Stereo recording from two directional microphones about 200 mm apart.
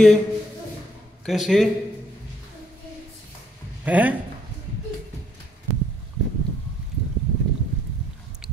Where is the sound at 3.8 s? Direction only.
10° right (ahead or behind).